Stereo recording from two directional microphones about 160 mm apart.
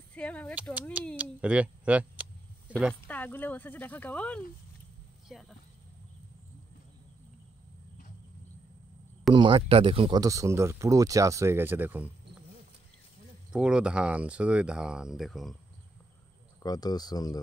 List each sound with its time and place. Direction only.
0.1 s speech: 10° left (ahead or behind)
1.1 s speech: 10° right (ahead or behind)
2.9 s speech: 10° left (ahead or behind)
9.3 s speech: 30° right (ahead or behind)
10.2 s speech: 20° right (ahead or behind)
13.5 s speech: 5° right (ahead or behind)
16.6 s speech: 25° left (ahead or behind)